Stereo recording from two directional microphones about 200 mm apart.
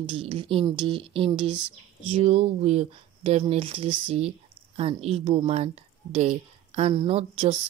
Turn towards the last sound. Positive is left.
turn(degrees=-30)  # may be behind; listen again after turning